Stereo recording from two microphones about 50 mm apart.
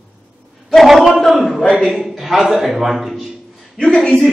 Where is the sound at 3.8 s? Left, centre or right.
Centre.